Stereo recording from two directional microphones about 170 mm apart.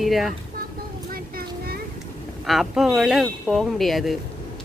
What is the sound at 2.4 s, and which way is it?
Speech, centre (ahead or behind).